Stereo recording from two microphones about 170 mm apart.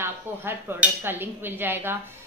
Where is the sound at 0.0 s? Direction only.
15° right (ahead or behind).